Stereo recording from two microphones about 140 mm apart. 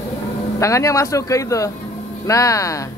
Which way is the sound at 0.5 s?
20° left (ahead or behind).